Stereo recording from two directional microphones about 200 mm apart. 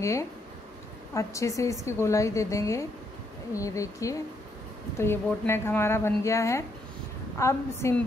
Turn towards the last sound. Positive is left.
turn(degrees=15)  # may be behind; listen again after turning